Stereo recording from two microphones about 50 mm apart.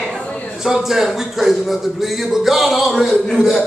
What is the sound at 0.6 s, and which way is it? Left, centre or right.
A man's voice, centre.